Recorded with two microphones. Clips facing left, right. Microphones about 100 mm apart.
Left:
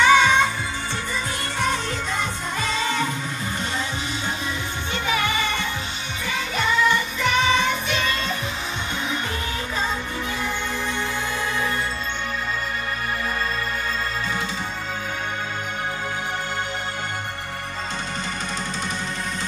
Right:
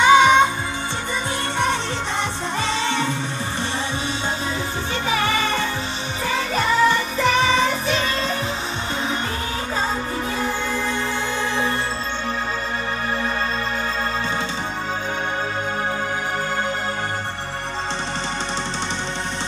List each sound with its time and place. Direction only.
0.0 s music: 20° right (ahead or behind)
2.6 s music: 25° right (ahead or behind)
5.0 s music: 35° right (ahead or behind)